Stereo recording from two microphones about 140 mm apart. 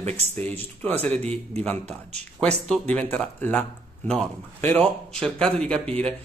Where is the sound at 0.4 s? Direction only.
10° left (ahead or behind).